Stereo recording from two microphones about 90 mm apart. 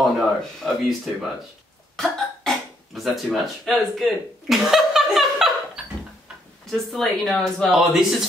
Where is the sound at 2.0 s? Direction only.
Centre (ahead or behind).